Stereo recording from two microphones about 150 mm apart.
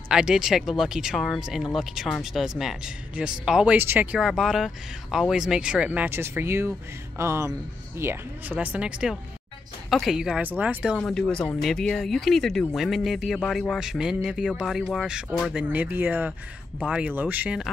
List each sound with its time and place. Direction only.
0.1 s speech: 5° right (ahead or behind)
11.0 s speech: 5° left (ahead or behind)